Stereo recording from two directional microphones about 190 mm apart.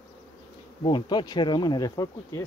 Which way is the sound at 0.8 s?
25° left (ahead or behind).